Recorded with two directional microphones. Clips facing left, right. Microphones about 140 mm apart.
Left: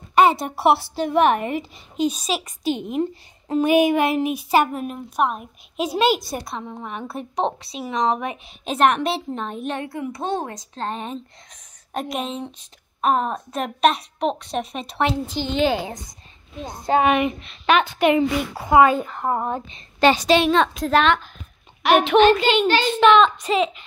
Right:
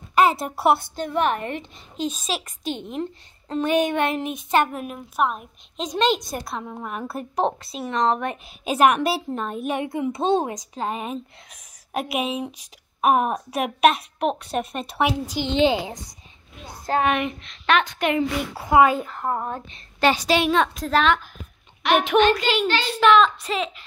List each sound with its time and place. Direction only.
0.1 s speech: centre (ahead or behind)
9.8 s a woman's voice: 20° right (ahead or behind)
15.4 s a woman's voice: 20° right (ahead or behind)
16.8 s speech: 5° left (ahead or behind)
18.7 s speech: 5° right (ahead or behind)
19.2 s speech: 10° left (ahead or behind)
22.7 s speech: 10° left (ahead or behind)
23.1 s speech: centre (ahead or behind)